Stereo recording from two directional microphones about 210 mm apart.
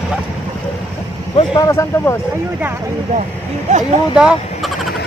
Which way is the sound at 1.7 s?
15° left (ahead or behind).